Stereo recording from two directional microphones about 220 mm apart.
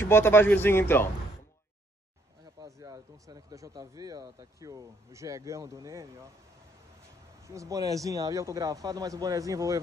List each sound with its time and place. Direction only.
0.0 s speech: 10° left (ahead or behind)
2.6 s speech: 15° right (ahead or behind)
7.4 s speech: 15° right (ahead or behind)